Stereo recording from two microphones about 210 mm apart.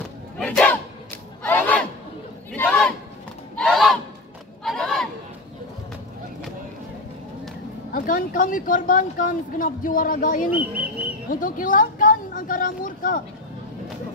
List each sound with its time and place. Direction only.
0.4 s a sound: 5° left (ahead or behind)
1.4 s battle cry: 10° left (ahead or behind)
2.5 s crowd: 5° left (ahead or behind)
3.5 s honk: centre (ahead or behind)
4.6 s crowd: centre (ahead or behind)
7.9 s speech: 40° left (ahead or behind)
11.2 s a sound: 40° left (ahead or behind)